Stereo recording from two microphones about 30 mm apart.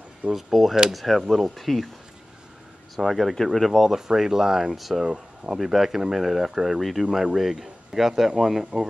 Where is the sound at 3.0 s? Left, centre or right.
Centre.